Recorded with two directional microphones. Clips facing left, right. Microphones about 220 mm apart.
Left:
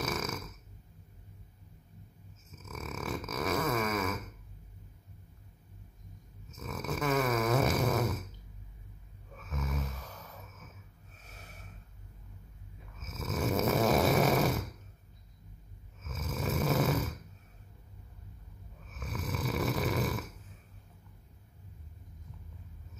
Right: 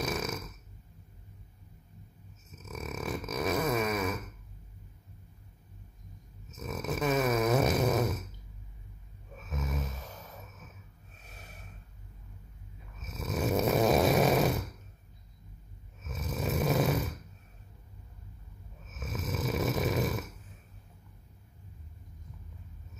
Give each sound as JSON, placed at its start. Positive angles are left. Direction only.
{"t": 0.0, "sound": "snoring", "side_deg": -20}
{"t": 2.5, "sound": "a sound", "side_deg": -20}
{"t": 6.5, "sound": "snoring", "side_deg": -20}
{"t": 9.5, "sound": "snoring", "side_deg": -20}
{"t": 13.0, "sound": "snoring", "side_deg": -20}
{"t": 16.0, "sound": "snoring", "side_deg": -20}
{"t": 18.9, "sound": "snoring", "side_deg": -20}